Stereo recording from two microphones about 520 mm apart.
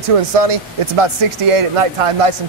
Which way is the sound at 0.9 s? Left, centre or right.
Right.